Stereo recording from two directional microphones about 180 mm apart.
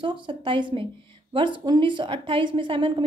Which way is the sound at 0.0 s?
30° right (ahead or behind).